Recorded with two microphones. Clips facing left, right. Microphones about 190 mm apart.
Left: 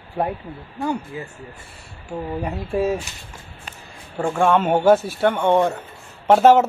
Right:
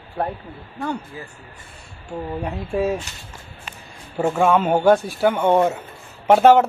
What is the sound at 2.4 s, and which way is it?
Speech, centre (ahead or behind).